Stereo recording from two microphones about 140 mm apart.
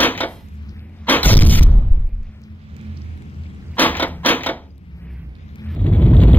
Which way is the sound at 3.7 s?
10° left (ahead or behind).